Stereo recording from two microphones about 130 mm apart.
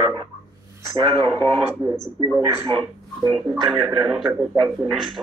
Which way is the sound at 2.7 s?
40° right (ahead or behind).